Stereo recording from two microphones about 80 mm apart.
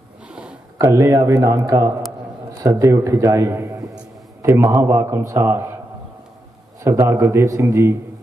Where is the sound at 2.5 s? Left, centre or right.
Right.